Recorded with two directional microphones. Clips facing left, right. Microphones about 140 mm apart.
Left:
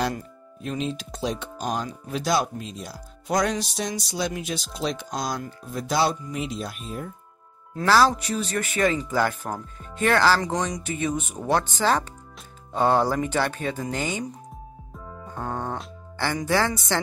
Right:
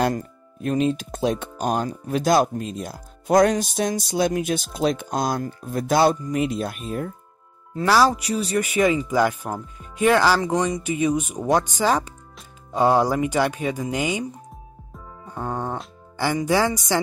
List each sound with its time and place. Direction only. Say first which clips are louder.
0.0 s speech: right 5 dB; 50° right (ahead or behind)
7.8 s speech: right 1 dB; 10° right (ahead or behind)
15.3 s music: right 3 dB; 10° right (ahead or behind)